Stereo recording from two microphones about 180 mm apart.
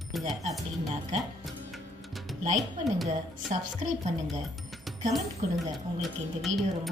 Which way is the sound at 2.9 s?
Centre (ahead or behind).